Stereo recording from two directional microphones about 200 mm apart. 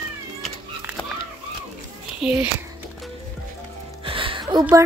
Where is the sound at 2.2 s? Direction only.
5° right (ahead or behind).